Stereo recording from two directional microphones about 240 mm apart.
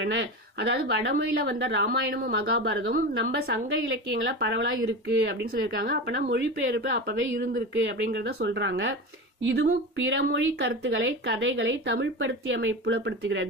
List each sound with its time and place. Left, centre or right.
0.0 s speech: right